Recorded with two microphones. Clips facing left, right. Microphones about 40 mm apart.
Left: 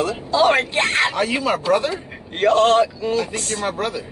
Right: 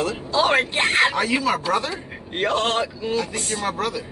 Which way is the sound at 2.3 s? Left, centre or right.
Centre.